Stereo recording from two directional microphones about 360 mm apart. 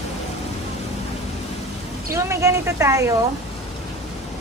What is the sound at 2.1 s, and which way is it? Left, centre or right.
Speech, centre.